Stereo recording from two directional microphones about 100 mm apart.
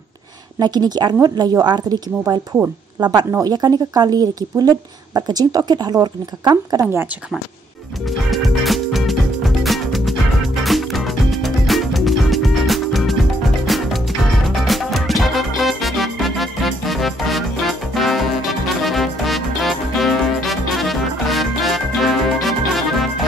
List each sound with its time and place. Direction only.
0.6 s speech: 45° right (ahead or behind)
2.5 s speech: 20° right (ahead or behind)
3.3 s speech: 35° right (ahead or behind)
8.3 s music: centre (ahead or behind)